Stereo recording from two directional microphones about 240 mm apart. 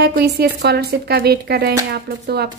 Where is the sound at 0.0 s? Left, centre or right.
Right.